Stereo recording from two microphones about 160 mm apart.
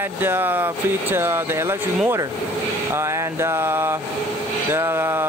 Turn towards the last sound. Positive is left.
turn(degrees=-15)  # may be behind; listen again after turning